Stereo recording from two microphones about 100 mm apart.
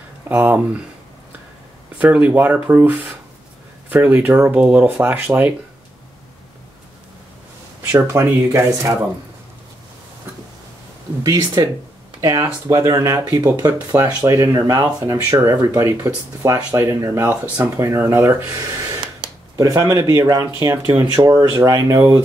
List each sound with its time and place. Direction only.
0.3 s speech: 20° right (ahead or behind)
2.0 s speech: 15° right (ahead or behind)
7.9 s speech: 30° right (ahead or behind)
11.2 s speech: 40° right (ahead or behind)
21.0 s speech: 45° right (ahead or behind)